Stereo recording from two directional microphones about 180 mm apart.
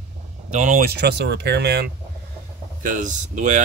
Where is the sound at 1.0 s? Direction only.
65° right (ahead or behind).